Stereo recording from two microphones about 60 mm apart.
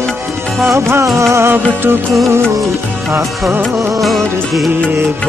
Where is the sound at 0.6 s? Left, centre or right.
Right.